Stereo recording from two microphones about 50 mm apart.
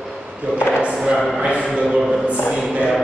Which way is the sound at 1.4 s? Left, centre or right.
Right.